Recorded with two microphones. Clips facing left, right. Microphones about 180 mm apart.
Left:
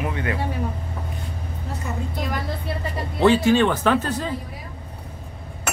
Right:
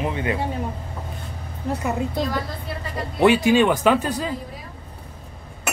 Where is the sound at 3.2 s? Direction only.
15° right (ahead or behind).